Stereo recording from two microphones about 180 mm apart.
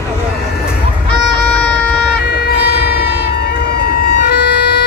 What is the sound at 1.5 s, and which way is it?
Wind instrument, 5° left (ahead or behind).